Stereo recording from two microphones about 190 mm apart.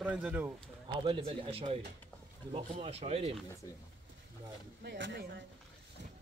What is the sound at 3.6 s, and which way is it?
Speech, 20° left (ahead or behind).